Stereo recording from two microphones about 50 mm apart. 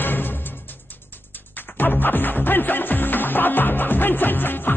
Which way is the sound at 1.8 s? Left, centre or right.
Left.